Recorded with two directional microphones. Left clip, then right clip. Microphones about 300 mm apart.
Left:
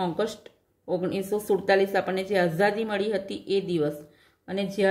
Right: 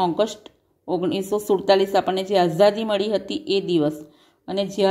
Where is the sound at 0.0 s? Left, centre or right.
Centre.